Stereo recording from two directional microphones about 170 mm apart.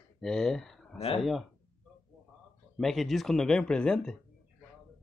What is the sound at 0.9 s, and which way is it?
Speech, 35° left (ahead or behind).